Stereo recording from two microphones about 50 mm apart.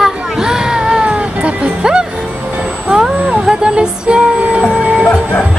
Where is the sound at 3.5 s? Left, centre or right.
Centre.